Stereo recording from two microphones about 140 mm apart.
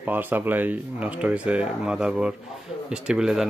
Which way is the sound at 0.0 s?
15° right (ahead or behind).